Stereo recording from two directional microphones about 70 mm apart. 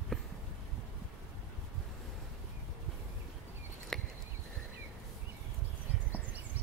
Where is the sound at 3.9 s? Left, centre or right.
Centre.